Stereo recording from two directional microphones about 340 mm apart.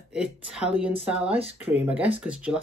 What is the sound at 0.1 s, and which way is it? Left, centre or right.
Speech, centre.